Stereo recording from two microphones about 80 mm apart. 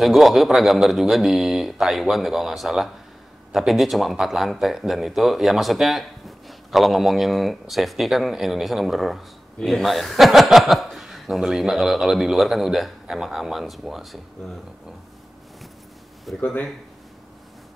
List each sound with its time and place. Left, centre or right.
0.0 s speech: centre
16.3 s speech: centre